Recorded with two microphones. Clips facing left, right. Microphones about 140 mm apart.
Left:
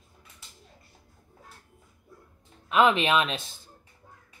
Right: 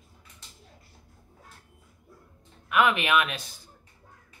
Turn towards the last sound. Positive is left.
turn(degrees=25)  # may be behind; listen again after turning